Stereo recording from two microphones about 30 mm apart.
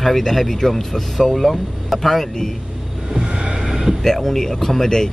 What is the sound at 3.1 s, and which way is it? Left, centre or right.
Vehicle, right.